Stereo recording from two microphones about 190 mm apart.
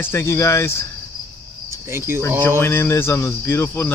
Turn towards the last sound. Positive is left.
turn(degrees=10)  # may be behind; listen again after turning